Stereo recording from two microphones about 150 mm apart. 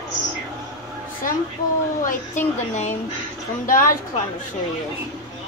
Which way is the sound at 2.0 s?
55° left (ahead or behind).